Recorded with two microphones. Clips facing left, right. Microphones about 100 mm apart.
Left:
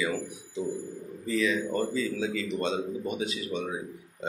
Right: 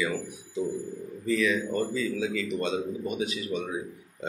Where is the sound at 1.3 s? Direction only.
25° left (ahead or behind).